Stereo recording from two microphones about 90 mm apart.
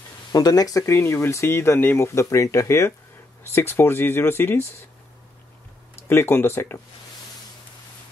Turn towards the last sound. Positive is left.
turn(degrees=25)  # may be behind; listen again after turning